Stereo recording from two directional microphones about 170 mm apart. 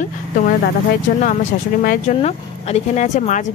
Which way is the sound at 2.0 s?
40° left (ahead or behind).